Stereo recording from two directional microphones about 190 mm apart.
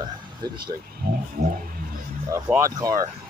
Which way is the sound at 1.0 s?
45° right (ahead or behind).